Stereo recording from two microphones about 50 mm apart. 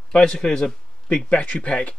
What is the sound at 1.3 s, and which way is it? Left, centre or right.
Speech, left.